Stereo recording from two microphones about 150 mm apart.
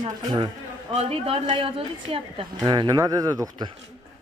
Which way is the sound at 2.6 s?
25° right (ahead or behind).